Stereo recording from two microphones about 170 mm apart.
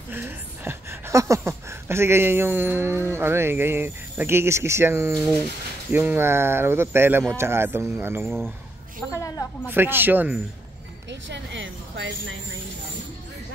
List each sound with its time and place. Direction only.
0.1 s speech: 15° right (ahead or behind)
9.1 s speech: 20° left (ahead or behind)
9.7 s speech: 10° right (ahead or behind)
11.1 s a sound: 90° right